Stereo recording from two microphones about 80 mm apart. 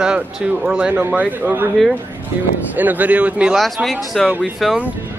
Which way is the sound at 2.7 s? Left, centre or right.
Right.